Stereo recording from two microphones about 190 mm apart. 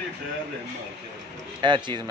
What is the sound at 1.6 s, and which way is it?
Speech, 25° right (ahead or behind).